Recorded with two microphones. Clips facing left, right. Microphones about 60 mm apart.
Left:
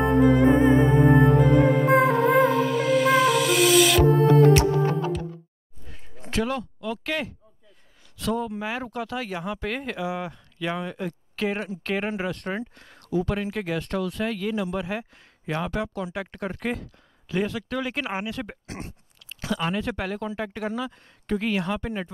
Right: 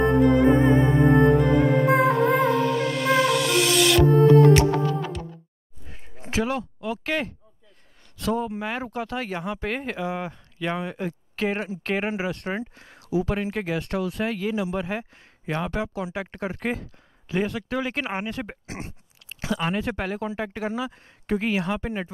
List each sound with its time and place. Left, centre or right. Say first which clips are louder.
0.0 s music: even; centre
5.9 s a sound: right 2 dB; centre
6.3 s speech: right 1 dB; centre